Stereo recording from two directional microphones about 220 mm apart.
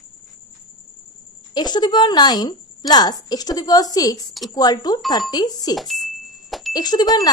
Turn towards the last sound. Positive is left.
turn(degrees=15)  # may be behind; listen again after turning